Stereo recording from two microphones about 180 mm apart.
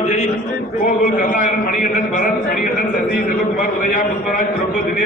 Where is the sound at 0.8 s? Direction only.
50° left (ahead or behind).